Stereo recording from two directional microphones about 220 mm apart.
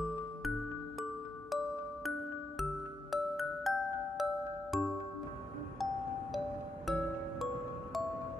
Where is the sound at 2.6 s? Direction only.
Centre (ahead or behind).